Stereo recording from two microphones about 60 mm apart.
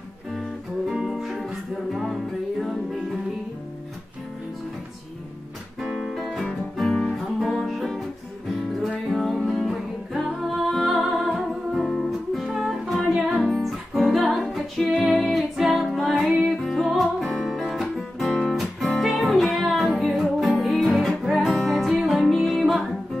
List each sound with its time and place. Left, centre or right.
0.3 s music: centre
5.8 s music: centre
7.1 s music: centre
9.1 s music: centre